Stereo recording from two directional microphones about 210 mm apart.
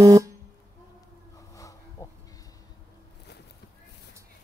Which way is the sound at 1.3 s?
15° left (ahead or behind).